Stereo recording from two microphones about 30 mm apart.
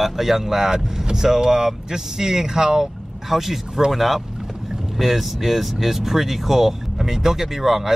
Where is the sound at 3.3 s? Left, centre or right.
Centre.